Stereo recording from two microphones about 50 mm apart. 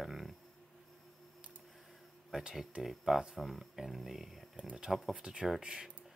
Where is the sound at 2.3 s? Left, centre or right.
Centre.